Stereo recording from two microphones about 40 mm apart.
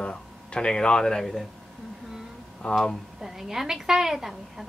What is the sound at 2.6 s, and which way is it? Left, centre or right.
Speech, left.